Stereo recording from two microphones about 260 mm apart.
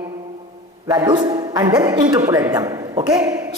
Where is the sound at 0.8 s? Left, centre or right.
Centre.